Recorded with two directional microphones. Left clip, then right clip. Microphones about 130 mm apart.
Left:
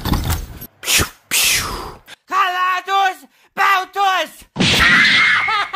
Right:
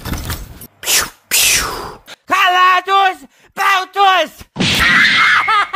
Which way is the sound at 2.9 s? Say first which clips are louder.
Right 4 dB; 30° right (ahead or behind).